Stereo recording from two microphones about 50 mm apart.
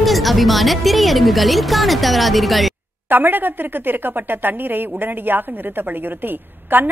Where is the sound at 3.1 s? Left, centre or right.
Right.